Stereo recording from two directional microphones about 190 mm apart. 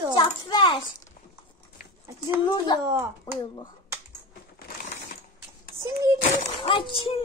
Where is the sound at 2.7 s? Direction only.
25° left (ahead or behind).